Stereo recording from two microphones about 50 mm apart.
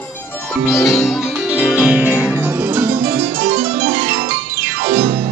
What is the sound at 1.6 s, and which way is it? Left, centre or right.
Music, right.